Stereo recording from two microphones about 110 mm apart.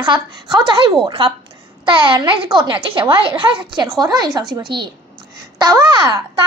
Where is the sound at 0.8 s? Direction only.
50° right (ahead or behind).